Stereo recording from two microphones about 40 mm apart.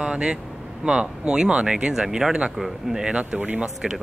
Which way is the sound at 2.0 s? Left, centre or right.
Centre.